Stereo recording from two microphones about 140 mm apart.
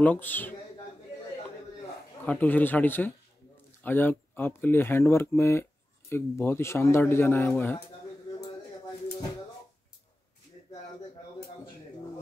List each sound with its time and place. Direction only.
0.0 s speech: 10° left (ahead or behind)
2.2 s speech: 15° left (ahead or behind)